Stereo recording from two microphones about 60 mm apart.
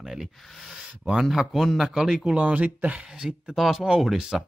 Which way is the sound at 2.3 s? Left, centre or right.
Right.